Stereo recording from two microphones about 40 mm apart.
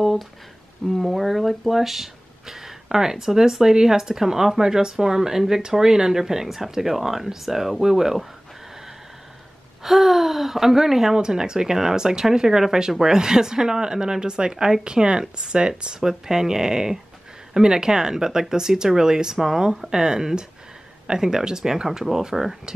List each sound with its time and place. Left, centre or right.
0.8 s speech: centre
9.8 s speech: centre